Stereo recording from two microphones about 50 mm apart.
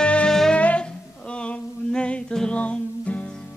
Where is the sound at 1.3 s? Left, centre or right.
Left.